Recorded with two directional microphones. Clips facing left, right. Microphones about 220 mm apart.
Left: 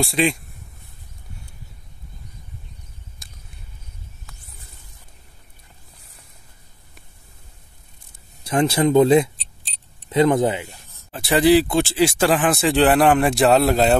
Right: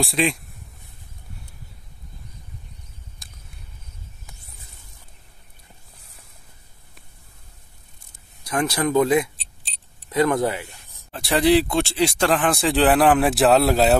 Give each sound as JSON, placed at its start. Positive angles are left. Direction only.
{"t": 0.0, "sound": "speech", "side_deg": 0}
{"t": 3.2, "sound": "a sound", "side_deg": 0}
{"t": 8.5, "sound": "speech", "side_deg": 25}
{"t": 9.4, "sound": "keys jangling", "side_deg": 0}
{"t": 10.0, "sound": "speech", "side_deg": 20}
{"t": 11.1, "sound": "speech", "side_deg": 0}